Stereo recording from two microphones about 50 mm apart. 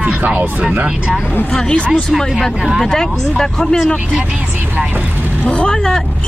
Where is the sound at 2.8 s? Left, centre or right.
Centre.